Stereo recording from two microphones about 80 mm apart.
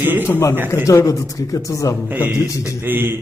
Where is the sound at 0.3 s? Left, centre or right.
Left.